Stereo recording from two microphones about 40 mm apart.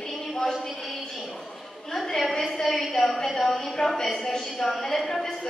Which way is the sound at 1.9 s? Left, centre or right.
Centre.